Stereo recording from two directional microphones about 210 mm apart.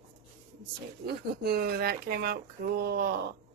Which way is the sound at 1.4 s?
45° right (ahead or behind).